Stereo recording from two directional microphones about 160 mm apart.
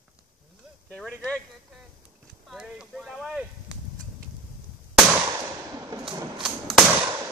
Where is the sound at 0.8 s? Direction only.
5° left (ahead or behind).